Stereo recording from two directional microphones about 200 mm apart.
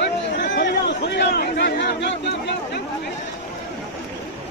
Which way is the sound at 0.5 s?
60° left (ahead or behind).